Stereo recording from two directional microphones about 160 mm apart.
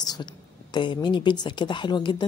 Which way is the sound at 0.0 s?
25° left (ahead or behind).